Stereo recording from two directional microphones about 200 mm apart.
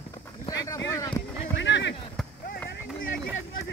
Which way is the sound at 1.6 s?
60° left (ahead or behind).